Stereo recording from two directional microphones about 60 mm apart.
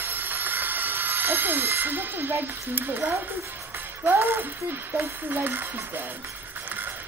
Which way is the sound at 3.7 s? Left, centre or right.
Right.